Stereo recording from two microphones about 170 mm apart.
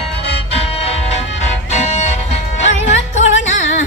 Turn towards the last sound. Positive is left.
turn(degrees=45)  # may be behind; listen again after turning